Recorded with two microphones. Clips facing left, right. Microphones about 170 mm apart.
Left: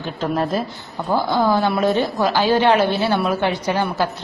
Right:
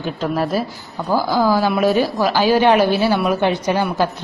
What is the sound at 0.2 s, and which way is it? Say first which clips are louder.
A woman's voice: even; 5° right (ahead or behind).